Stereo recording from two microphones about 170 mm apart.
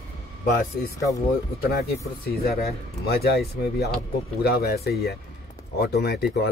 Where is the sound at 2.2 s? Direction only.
65° left (ahead or behind).